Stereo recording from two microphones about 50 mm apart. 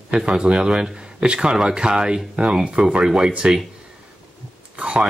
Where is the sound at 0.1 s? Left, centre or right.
Centre.